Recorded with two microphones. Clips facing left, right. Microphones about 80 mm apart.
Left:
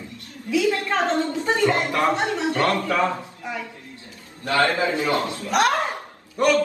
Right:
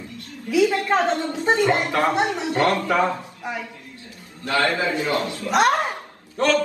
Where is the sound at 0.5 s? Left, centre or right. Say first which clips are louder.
Right 3 dB; right.